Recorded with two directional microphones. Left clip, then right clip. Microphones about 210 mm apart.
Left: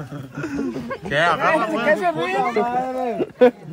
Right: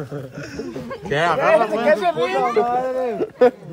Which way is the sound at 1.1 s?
50° right (ahead or behind).